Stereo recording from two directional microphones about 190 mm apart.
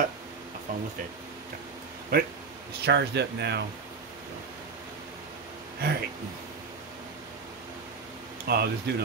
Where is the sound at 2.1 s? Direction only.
55° right (ahead or behind).